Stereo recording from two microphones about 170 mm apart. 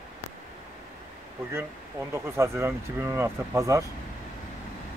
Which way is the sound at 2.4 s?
15° right (ahead or behind).